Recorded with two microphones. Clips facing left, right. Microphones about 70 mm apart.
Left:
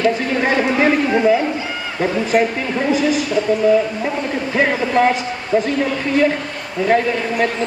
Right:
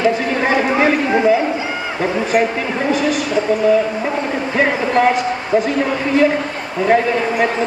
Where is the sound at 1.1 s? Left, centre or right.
Centre.